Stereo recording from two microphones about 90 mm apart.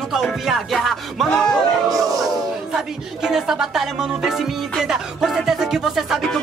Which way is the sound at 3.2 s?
5° right (ahead or behind).